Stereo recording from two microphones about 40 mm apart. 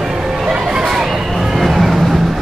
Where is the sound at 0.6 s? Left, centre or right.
Centre.